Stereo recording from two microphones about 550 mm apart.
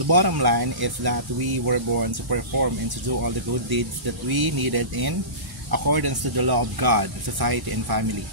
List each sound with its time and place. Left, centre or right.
0.0 s speech: right
4.3 s speech: right
4.6 s speech: right